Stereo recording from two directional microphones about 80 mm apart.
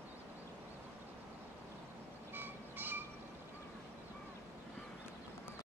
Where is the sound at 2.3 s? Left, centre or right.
Right.